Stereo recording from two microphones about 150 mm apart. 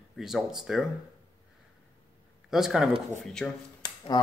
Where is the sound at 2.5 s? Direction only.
Centre (ahead or behind).